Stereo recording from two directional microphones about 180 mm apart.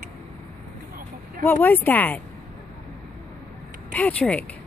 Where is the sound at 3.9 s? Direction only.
5° left (ahead or behind).